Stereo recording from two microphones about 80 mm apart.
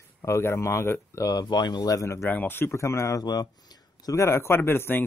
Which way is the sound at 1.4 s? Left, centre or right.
Left.